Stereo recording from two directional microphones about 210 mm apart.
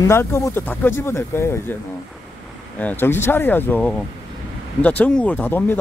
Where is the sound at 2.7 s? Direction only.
10° left (ahead or behind).